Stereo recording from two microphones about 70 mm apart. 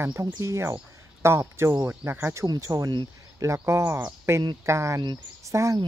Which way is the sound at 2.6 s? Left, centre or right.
Right.